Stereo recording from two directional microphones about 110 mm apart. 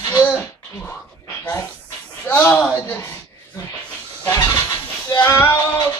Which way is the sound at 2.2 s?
15° left (ahead or behind).